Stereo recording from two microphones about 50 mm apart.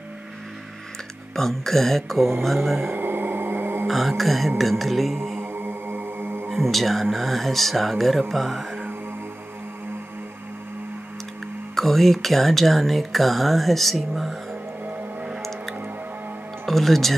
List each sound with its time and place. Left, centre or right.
1.3 s speech: centre
2.9 s a sound: right
3.8 s speech: centre
5.4 s music: right
6.5 s speech: centre
11.7 s speech: centre
16.6 s speech: centre